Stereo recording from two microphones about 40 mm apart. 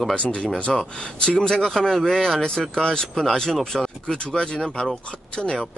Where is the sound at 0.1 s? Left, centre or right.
Left.